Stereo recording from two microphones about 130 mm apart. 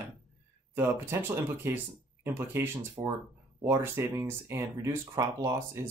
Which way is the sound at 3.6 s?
20° right (ahead or behind).